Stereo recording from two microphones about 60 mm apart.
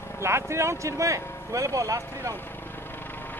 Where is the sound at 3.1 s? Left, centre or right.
Left.